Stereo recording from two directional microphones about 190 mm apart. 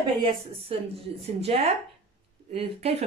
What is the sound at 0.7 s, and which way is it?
Speech, 30° right (ahead or behind).